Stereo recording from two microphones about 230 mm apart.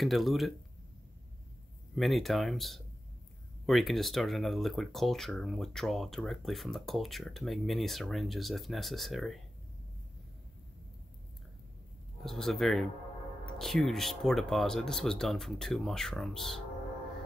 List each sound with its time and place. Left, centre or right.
0.0 s speech: centre
2.0 s speech: centre
12.2 s speech: centre